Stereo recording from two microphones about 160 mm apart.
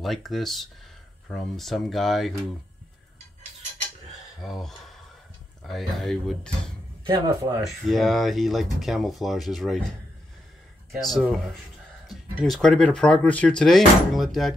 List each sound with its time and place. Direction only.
0.0 s speech: centre (ahead or behind)
4.4 s speech: centre (ahead or behind)
7.1 s speech: 25° right (ahead or behind)
7.8 s speech: centre (ahead or behind)